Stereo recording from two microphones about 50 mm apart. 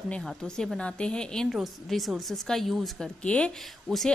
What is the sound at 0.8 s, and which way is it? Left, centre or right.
Speech, left.